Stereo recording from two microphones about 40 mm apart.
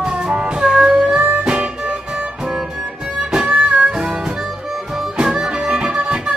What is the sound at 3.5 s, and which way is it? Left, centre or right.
Music, right.